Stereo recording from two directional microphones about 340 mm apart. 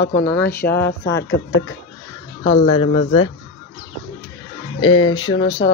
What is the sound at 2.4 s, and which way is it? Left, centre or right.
Speech, centre.